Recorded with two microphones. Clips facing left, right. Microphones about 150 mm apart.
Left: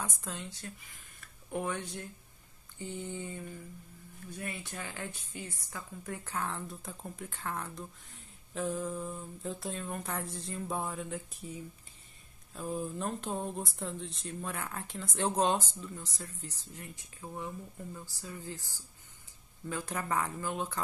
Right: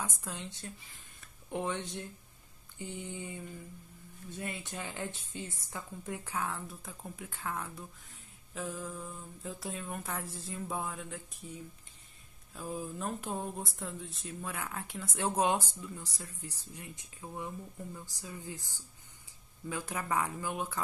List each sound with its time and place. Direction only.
0.0 s a woman's voice: 10° right (ahead or behind)